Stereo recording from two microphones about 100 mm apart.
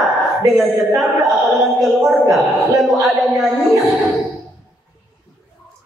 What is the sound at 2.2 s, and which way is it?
Speech, 35° right (ahead or behind).